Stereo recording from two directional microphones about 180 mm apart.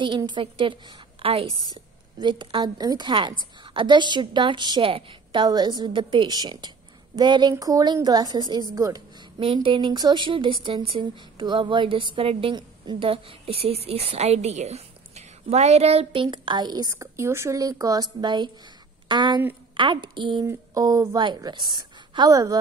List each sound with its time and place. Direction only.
0.0 s a woman's voice: 25° right (ahead or behind)